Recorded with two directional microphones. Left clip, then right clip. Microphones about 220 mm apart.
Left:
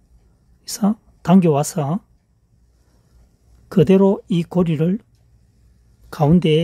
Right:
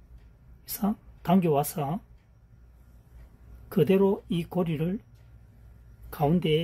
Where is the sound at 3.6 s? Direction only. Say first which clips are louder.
Left 8 dB; 50° left (ahead or behind).